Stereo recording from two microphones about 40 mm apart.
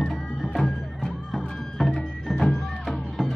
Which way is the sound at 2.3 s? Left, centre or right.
Centre.